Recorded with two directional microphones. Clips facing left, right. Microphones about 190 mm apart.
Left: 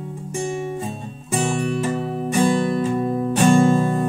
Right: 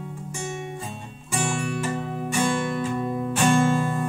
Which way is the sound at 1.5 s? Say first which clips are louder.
Left 5 dB; 35° left (ahead or behind).